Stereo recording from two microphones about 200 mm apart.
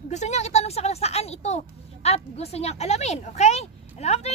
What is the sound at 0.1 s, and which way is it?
A woman's voice, 35° left (ahead or behind).